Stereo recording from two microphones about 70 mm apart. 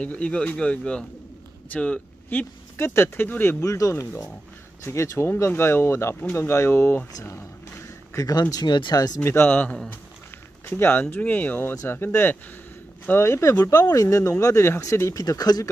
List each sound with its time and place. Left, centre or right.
0.0 s speech: centre
3.6 s speech: left
7.2 s a sound: left
8.2 s speech: left
9.2 s speech: left